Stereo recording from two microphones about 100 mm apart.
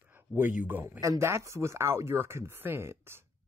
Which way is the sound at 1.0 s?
30° right (ahead or behind).